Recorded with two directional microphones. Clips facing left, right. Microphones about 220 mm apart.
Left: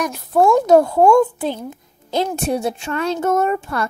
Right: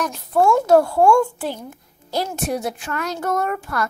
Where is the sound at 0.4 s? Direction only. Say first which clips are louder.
Left 2 dB; 20° left (ahead or behind).